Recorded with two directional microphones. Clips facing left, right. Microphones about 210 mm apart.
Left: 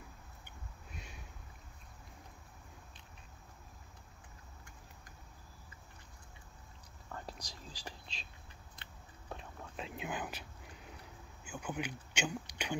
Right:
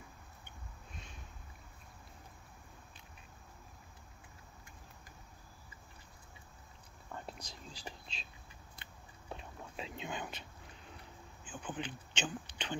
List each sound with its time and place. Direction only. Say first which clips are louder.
0.9 s boat: left 2 dB; 10° left (ahead or behind)
7.1 s whispering: even; centre (ahead or behind)
7.3 s speech: right 1 dB; 35° left (ahead or behind)
9.3 s whispering: even; centre (ahead or behind)
11.4 s speech: left 2 dB; 10° left (ahead or behind)